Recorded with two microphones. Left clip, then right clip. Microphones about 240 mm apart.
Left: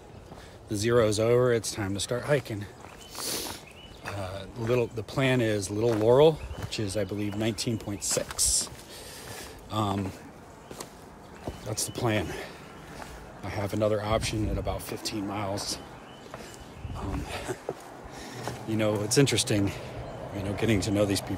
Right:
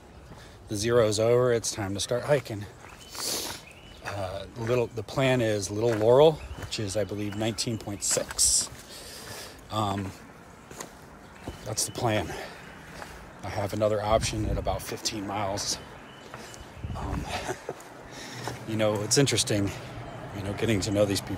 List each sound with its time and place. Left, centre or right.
0.7 s speech: centre
3.2 s a sound: centre
4.0 s speech: centre
9.3 s a sound: centre
11.6 s speech: centre
16.9 s dog: centre
18.1 s speech: centre